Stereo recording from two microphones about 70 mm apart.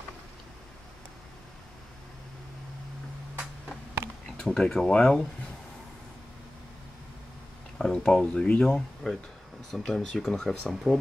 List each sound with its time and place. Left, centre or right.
4.0 s a sound: right
4.4 s speech: centre
7.8 s speech: centre